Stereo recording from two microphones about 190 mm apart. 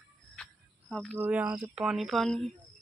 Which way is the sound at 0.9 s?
5° left (ahead or behind).